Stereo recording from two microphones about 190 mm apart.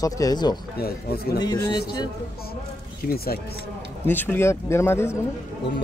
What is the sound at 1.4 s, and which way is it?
Speech, 20° left (ahead or behind).